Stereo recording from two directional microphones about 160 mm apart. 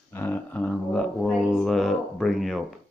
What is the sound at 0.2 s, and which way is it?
Speech, 10° left (ahead or behind).